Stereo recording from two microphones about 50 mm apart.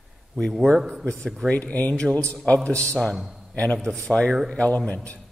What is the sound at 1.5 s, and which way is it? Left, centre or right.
Speech, left.